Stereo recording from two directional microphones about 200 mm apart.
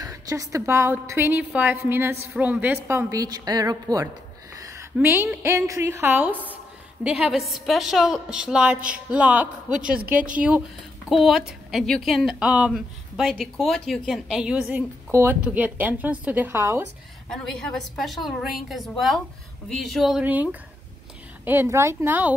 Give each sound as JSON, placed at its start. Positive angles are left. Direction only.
{"t": 0.0, "sound": "a woman's voice", "side_deg": -15}
{"t": 9.8, "sound": "speech", "side_deg": -45}
{"t": 11.1, "sound": "a woman's voice", "side_deg": 0}
{"t": 17.3, "sound": "a woman's voice", "side_deg": 0}
{"t": 21.5, "sound": "a woman's voice", "side_deg": -10}